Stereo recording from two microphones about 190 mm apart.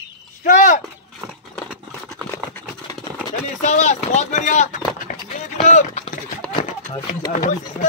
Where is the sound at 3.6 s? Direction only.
40° left (ahead or behind).